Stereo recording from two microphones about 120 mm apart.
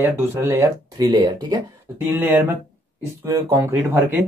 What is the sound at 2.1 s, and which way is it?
Speech, 15° right (ahead or behind).